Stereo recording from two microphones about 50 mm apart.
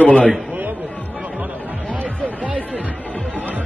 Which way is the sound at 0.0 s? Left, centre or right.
Left.